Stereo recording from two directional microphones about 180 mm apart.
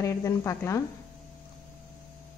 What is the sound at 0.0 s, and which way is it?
Speech, 15° left (ahead or behind).